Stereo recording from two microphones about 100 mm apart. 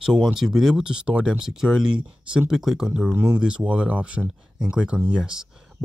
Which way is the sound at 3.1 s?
20° right (ahead or behind).